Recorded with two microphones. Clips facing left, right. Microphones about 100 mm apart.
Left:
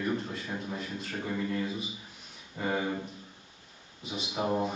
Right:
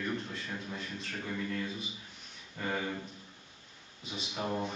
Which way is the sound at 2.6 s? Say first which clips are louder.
Left 4 dB; 15° left (ahead or behind).